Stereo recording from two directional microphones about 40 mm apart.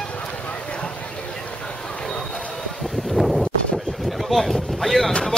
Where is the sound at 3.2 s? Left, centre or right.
Centre.